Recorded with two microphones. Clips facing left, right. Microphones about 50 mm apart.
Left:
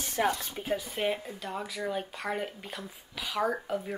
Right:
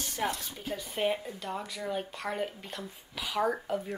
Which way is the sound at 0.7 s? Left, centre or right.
Centre.